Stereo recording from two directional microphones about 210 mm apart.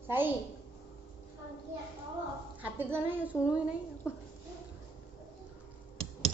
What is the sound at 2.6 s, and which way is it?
Child singing, 10° right (ahead or behind).